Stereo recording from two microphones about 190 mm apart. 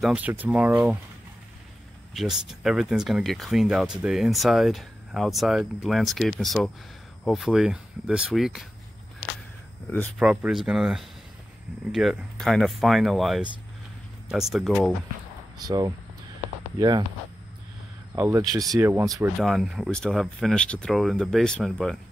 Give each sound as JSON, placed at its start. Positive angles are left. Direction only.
{"t": 0.0, "sound": "speech", "side_deg": -5}
{"t": 2.1, "sound": "speech", "side_deg": 0}
{"t": 9.8, "sound": "speech", "side_deg": 10}
{"t": 10.1, "sound": "speech", "side_deg": -5}
{"t": 15.6, "sound": "speech", "side_deg": -20}
{"t": 18.1, "sound": "speech", "side_deg": -15}
{"t": 19.4, "sound": "speech", "side_deg": 0}